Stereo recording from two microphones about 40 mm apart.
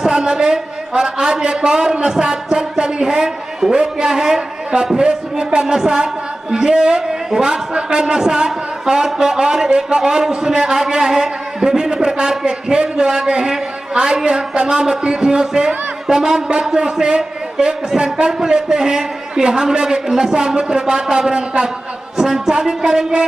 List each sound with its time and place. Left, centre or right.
0.0 s a man's voice: right